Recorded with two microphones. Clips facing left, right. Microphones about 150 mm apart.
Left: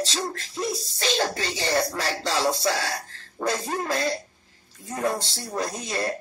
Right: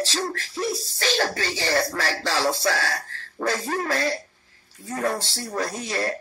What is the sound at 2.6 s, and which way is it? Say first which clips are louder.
Speech: right 1 dB; 15° left (ahead or behind).